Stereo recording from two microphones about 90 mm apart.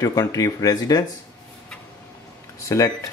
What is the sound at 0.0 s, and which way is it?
Speech, 40° left (ahead or behind).